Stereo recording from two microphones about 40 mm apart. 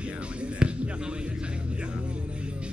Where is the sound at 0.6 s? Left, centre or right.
Right.